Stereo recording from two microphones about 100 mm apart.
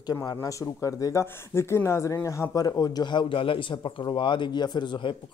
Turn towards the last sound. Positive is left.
turn(degrees=50)  # may be behind; listen again after turning